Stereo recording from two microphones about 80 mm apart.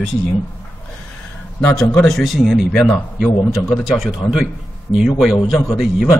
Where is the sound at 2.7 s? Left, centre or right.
Centre.